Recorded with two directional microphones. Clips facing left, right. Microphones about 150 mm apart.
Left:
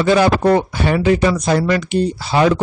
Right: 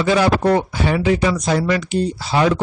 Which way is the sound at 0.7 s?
60° left (ahead or behind).